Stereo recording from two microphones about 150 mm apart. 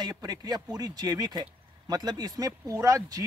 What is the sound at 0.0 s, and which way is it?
Speech, 25° right (ahead or behind).